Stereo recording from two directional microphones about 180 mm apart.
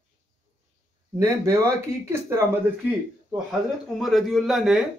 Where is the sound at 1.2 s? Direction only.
15° right (ahead or behind).